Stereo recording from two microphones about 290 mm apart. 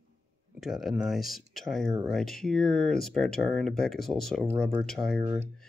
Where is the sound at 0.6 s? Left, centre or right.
Centre.